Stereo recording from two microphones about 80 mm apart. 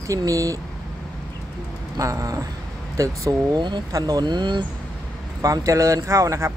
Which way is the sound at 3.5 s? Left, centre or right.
Right.